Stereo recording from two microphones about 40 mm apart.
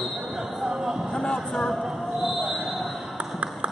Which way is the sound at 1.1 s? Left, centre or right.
Centre.